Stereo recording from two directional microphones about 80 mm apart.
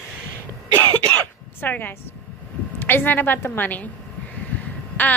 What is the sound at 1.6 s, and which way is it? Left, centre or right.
A woman's voice, left.